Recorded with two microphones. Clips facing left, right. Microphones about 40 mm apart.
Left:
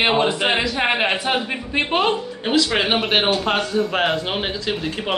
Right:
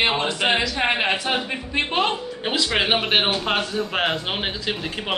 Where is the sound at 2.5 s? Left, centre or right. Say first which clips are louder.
Left 3 dB; centre.